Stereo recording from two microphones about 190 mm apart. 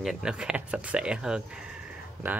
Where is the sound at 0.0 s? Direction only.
Centre (ahead or behind).